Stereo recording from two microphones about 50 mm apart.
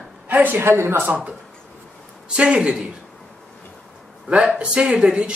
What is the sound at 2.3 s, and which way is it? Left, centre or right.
Speech, centre.